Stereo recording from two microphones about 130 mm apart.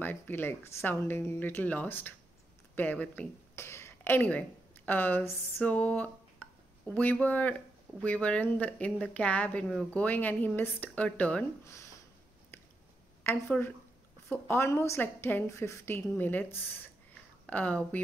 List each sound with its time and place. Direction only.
0.0 s speech: 15° left (ahead or behind)
13.2 s speech: 15° left (ahead or behind)
17.5 s speech: 10° left (ahead or behind)